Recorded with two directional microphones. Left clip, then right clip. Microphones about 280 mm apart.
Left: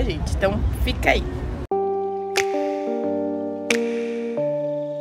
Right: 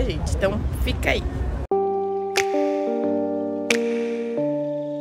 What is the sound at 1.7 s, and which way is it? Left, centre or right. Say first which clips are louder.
Music: right 1 dB; centre.